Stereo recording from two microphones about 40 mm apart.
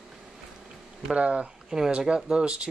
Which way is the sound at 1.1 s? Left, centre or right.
Right.